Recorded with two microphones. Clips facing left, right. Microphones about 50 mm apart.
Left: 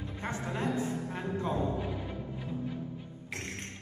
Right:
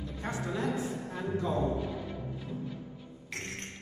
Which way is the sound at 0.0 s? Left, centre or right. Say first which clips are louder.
Right 1 dB; left.